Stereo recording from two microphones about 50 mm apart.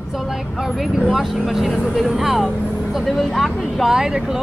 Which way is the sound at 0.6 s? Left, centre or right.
Centre.